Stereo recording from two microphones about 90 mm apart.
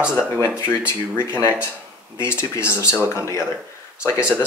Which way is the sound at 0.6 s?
25° left (ahead or behind).